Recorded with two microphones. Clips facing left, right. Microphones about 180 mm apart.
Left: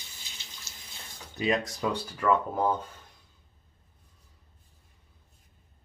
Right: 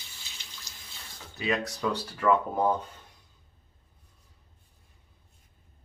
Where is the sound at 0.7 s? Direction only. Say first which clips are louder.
Even; 15° right (ahead or behind).